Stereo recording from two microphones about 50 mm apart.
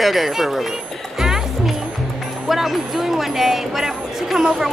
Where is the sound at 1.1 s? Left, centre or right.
Centre.